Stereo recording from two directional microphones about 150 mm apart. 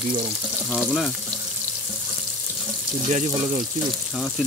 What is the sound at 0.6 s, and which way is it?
Speech, centre (ahead or behind).